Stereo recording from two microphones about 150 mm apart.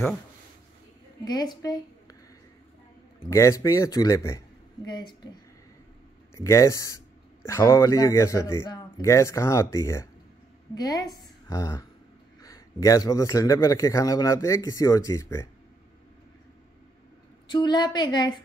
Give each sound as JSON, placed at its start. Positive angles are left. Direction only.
{"t": 1.2, "sound": "a woman's voice", "side_deg": 25}
{"t": 3.3, "sound": "a man's voice", "side_deg": 20}
{"t": 6.3, "sound": "a man's voice", "side_deg": 20}
{"t": 8.6, "sound": "a sound", "side_deg": 35}
{"t": 9.0, "sound": "a man's voice", "side_deg": 20}
{"t": 17.5, "sound": "a man's voice", "side_deg": 30}